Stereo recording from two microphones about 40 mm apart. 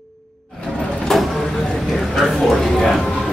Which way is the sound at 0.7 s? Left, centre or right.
Centre.